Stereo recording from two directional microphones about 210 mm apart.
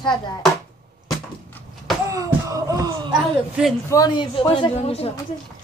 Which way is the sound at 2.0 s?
15° right (ahead or behind).